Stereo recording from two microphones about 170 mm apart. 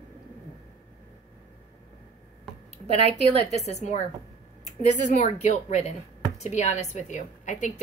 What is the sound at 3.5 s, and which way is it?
A woman's voice, 40° left (ahead or behind).